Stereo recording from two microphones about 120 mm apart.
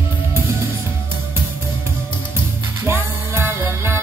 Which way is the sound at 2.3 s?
20° right (ahead or behind).